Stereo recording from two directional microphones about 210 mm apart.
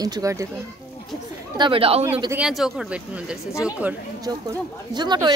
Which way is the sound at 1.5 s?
25° right (ahead or behind).